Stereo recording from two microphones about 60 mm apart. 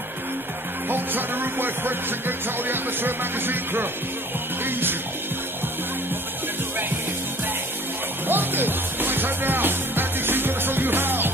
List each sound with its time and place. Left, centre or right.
0.8 s music: right
8.3 s music: right